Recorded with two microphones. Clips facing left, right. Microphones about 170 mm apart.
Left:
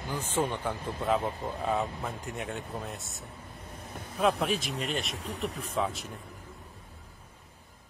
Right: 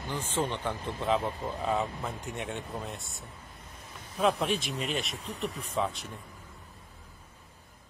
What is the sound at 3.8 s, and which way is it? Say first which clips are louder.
Vehicle: left 3 dB; 60° left (ahead or behind).